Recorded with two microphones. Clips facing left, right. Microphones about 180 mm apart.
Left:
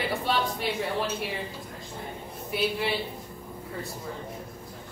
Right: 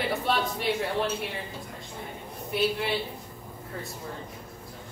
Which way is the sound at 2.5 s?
Centre (ahead or behind).